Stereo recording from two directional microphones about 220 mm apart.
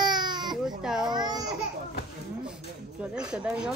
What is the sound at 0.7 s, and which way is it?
Baby cry, centre (ahead or behind).